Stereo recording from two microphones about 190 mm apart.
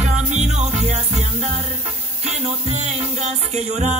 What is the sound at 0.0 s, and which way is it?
Music, 35° right (ahead or behind).